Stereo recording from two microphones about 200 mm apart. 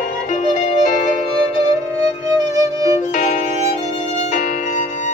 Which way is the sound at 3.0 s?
35° left (ahead or behind).